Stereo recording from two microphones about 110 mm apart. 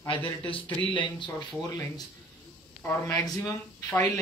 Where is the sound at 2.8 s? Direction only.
25° left (ahead or behind).